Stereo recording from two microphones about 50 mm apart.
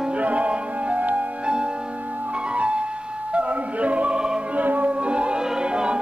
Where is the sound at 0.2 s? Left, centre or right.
Right.